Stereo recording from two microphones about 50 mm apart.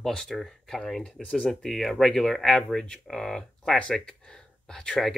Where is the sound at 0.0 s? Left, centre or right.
Centre.